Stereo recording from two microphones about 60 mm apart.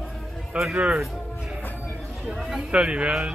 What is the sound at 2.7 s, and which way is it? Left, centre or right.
Speech, centre.